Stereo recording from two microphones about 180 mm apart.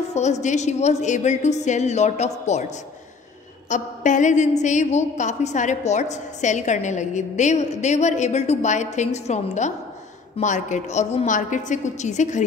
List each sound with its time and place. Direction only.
0.1 s a woman's voice: 40° left (ahead or behind)
3.6 s a woman's voice: 45° left (ahead or behind)